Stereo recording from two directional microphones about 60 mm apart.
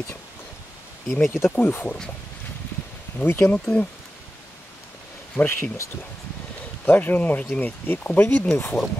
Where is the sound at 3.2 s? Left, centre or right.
Left.